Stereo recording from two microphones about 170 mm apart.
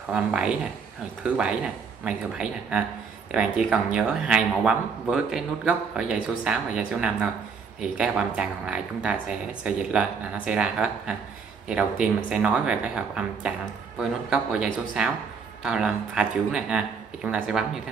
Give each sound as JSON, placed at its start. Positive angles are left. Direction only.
{"t": 0.1, "sound": "speech", "side_deg": -5}